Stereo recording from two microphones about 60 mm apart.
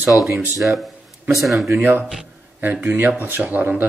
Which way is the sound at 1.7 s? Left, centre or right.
Right.